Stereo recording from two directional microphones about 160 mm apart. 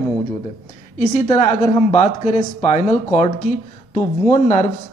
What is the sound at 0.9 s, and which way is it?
Speech, 45° left (ahead or behind).